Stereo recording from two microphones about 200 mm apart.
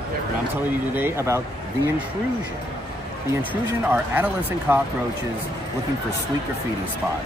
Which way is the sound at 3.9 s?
10° right (ahead or behind).